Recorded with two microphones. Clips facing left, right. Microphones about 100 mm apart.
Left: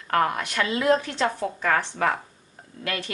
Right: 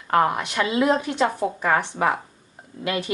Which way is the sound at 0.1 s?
20° right (ahead or behind).